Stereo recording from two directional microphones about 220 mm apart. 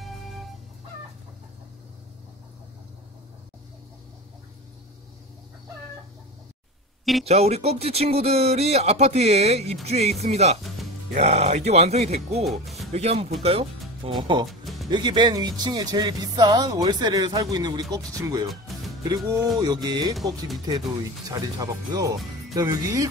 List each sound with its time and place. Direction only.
0.0 s music: centre (ahead or behind)
7.2 s speech: 30° right (ahead or behind)
12.4 s speech: centre (ahead or behind)
12.9 s speech: 25° right (ahead or behind)
14.5 s music: centre (ahead or behind)
14.9 s speech: 20° right (ahead or behind)
18.5 s music: centre (ahead or behind)
19.0 s speech: 15° right (ahead or behind)
20.2 s speech: centre (ahead or behind)
21.3 s speech: 15° right (ahead or behind)